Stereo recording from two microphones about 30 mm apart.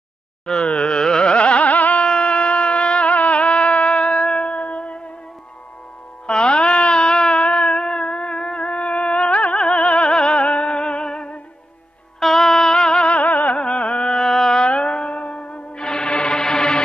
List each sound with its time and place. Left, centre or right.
0.5 s carnatic music: left
1.3 s carnatic music: left
1.6 s carnatic music: left
2.0 s music: left
3.1 s music: left
6.2 s music: left
12.2 s music: centre
13.2 s music: left
13.6 s carnatic music: left
14.0 s music: centre
14.6 s music: left
15.8 s music: left